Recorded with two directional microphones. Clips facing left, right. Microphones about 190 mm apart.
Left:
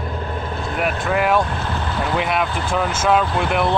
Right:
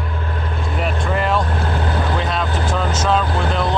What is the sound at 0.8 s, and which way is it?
Vehicle, 10° left (ahead or behind).